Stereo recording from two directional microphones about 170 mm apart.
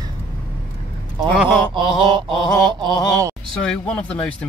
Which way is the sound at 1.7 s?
30° right (ahead or behind).